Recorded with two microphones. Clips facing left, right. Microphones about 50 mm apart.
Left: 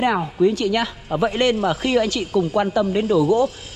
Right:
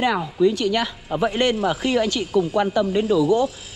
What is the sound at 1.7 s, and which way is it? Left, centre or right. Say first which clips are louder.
A woman's voice: left 1 dB; left.